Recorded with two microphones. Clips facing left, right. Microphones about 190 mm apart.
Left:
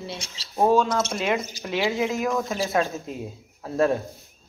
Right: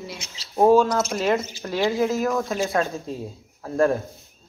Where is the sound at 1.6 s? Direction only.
10° left (ahead or behind).